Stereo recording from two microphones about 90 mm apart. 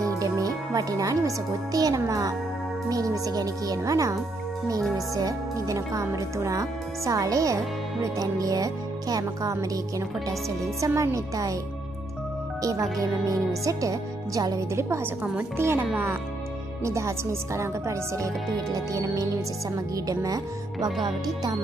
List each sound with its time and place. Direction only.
0.0 s speech: 40° right (ahead or behind)
13.0 s speech: 40° right (ahead or behind)
15.5 s speech: 30° right (ahead or behind); by 21.5 s 45° right (ahead or behind)